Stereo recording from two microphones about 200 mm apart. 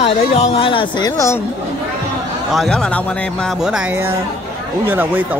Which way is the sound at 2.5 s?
5° left (ahead or behind).